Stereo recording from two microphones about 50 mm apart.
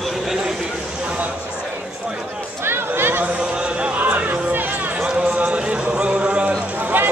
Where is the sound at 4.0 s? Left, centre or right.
Right.